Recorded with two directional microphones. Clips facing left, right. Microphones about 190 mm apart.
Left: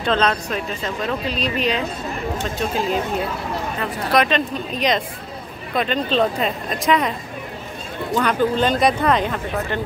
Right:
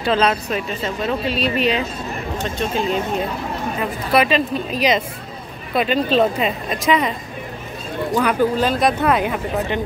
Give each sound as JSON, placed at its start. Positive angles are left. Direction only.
{"t": 0.0, "sound": "a woman's voice", "side_deg": -5}